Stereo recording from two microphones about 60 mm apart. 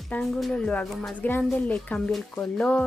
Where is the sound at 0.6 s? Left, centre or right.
Left.